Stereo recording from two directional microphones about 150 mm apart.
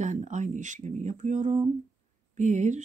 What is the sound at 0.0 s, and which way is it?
Speech, 55° right (ahead or behind).